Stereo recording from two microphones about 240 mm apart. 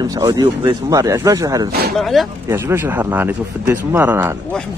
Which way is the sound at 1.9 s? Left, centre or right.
Centre.